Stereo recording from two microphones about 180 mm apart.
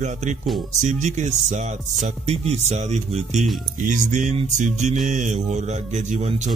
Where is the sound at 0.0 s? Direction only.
40° right (ahead or behind).